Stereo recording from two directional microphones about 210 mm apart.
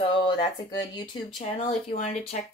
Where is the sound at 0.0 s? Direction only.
20° left (ahead or behind).